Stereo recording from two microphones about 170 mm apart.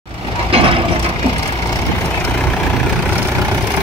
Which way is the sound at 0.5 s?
35° right (ahead or behind).